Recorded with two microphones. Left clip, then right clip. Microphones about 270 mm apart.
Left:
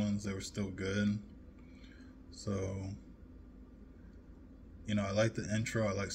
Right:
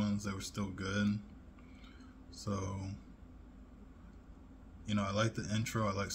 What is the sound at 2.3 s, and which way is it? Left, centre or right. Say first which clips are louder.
Speech: left 2 dB; centre.